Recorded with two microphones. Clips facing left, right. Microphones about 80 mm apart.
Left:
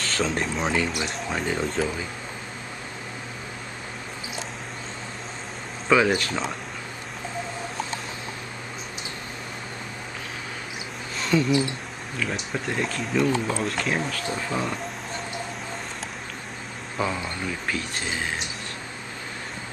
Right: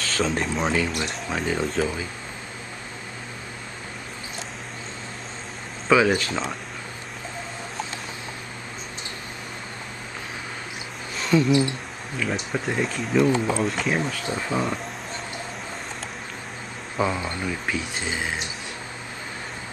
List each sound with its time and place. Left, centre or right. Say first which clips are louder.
0.0 s speech: right 1 dB; centre
5.9 s speech: right 1 dB; centre
11.1 s speech: right 2 dB; centre
14.5 s speech: right 3 dB; centre
16.9 s speech: right 3 dB; centre